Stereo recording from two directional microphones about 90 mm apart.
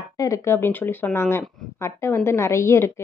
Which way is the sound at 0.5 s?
25° left (ahead or behind).